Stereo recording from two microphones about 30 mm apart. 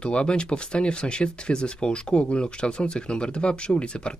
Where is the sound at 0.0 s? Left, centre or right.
Left.